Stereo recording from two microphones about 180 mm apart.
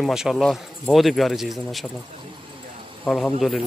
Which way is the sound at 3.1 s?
Centre (ahead or behind).